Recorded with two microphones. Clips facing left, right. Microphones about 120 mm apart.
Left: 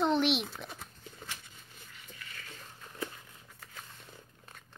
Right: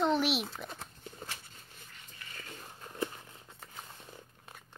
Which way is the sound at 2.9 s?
20° right (ahead or behind).